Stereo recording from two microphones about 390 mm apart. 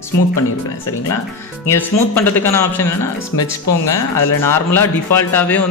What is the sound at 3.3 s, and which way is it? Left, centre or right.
Speech, left.